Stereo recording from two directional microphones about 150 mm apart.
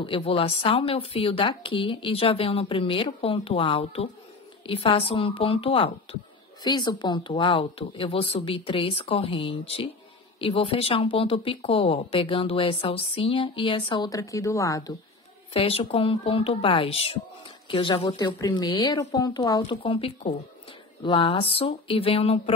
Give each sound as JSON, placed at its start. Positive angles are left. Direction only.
{"t": 0.0, "sound": "speech", "side_deg": 35}
{"t": 6.6, "sound": "speech", "side_deg": 30}
{"t": 15.5, "sound": "a woman's voice", "side_deg": 40}